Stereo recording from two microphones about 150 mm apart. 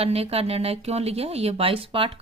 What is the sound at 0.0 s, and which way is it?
Speech, 45° right (ahead or behind).